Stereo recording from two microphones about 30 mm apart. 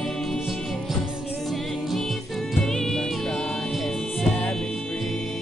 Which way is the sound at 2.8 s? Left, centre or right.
Centre.